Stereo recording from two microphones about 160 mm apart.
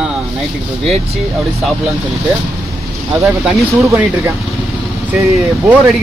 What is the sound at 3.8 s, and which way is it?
Speech, 15° right (ahead or behind).